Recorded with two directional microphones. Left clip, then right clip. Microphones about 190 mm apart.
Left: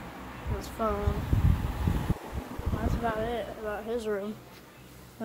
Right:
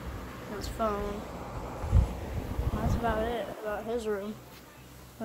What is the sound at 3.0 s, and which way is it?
A woman's voice, 5° right (ahead or behind).